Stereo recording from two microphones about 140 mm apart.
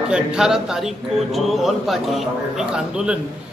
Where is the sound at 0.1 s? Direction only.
5° right (ahead or behind).